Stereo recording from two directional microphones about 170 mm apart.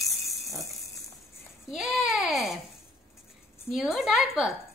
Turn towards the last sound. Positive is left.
turn(degrees=0)  # may be behind; listen again after turning